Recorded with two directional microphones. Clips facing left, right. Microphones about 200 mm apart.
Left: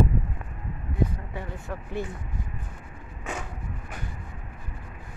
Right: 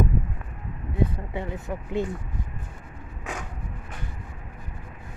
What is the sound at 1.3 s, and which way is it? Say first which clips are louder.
Speech: right 4 dB; 20° right (ahead or behind).